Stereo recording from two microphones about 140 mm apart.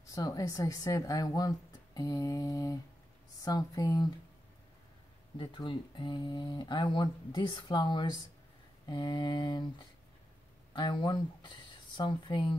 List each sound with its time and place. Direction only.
0.0 s speech: 25° left (ahead or behind)
5.4 s speech: 30° left (ahead or behind)
10.7 s speech: 35° left (ahead or behind)